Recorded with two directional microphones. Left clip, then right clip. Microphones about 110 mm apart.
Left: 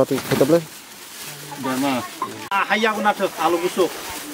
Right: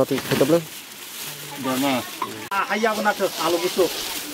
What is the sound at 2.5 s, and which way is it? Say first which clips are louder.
Speech: left 3 dB; 40° left (ahead or behind).